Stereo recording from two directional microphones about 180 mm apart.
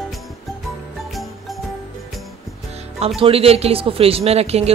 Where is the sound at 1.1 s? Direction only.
Centre (ahead or behind).